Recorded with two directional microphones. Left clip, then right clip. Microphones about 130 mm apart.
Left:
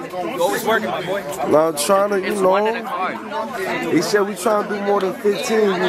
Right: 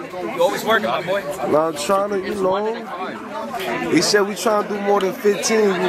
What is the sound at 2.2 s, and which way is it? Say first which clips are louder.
Speech: left 4 dB; 30° left (ahead or behind).